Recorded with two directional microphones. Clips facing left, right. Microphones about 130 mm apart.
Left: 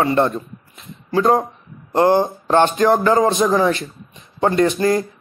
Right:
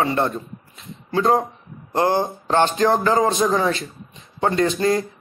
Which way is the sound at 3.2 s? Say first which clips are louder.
Left 3 dB; 20° left (ahead or behind).